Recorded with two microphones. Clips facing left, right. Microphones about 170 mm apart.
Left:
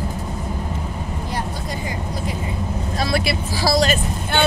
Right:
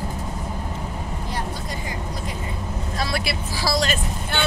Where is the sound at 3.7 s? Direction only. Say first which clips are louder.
Left 5 dB; 40° left (ahead or behind).